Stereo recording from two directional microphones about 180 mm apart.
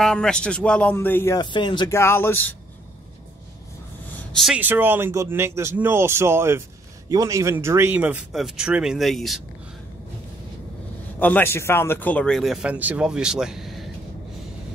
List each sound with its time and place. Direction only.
0.0 s a man's voice: 5° left (ahead or behind)
1.4 s speech: 25° left (ahead or behind)
2.0 s speech: 15° left (ahead or behind)
4.3 s speech: centre (ahead or behind)
11.1 s a man's voice: 10° left (ahead or behind)